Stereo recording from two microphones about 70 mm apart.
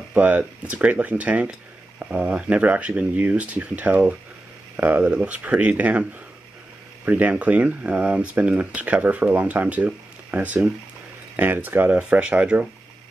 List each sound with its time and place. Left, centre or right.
0.1 s speech: right
7.1 s speech: right